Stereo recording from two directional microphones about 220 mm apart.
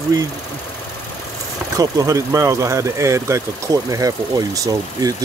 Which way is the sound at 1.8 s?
15° right (ahead or behind).